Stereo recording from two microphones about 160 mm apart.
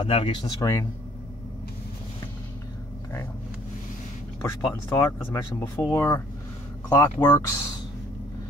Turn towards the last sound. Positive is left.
turn(degrees=20)  # may be behind; listen again after turning